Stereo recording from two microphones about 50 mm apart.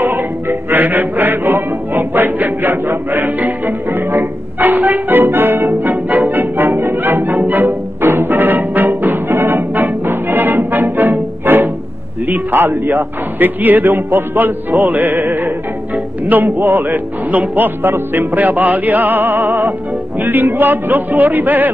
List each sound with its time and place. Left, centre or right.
0.0 s music: right
12.3 s a sound: right
13.4 s speech: right